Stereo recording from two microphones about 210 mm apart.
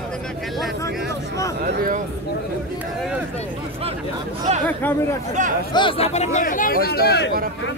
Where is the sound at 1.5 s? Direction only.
45° right (ahead or behind).